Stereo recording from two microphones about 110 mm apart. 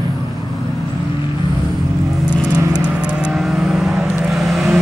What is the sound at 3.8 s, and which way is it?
Vehicle, centre (ahead or behind).